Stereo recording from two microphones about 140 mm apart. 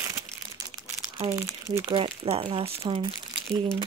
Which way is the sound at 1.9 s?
40° right (ahead or behind).